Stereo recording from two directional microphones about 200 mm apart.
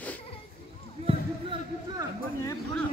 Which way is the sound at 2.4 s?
15° left (ahead or behind).